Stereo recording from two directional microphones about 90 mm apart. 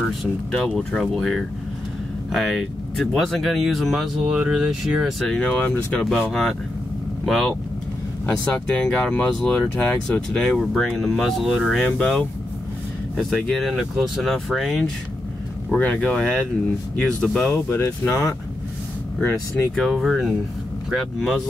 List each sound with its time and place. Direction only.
0.0 s speech: 5° left (ahead or behind)
5.4 s speech: 15° left (ahead or behind)
6.0 s speech: 5° left (ahead or behind)
8.7 s speech: 10° left (ahead or behind)
11.8 s speech: 10° left (ahead or behind)
15.7 s speech: 15° left (ahead or behind)
17.6 s speech: 30° left (ahead or behind)
19.5 s speech: 5° left (ahead or behind)